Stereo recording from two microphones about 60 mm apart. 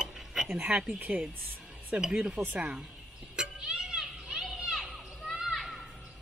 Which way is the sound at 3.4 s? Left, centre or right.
Centre.